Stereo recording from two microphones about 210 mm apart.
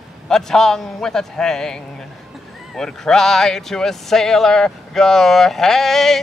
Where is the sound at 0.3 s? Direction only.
Centre (ahead or behind).